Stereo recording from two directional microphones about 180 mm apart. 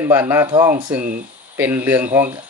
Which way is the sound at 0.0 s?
10° right (ahead or behind).